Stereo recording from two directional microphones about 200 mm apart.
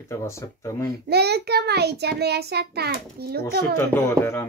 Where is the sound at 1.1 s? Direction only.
55° right (ahead or behind).